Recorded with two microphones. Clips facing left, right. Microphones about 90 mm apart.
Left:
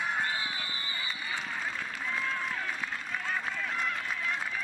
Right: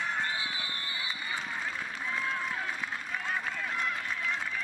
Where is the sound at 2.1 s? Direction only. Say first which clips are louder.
Even; 5° right (ahead or behind).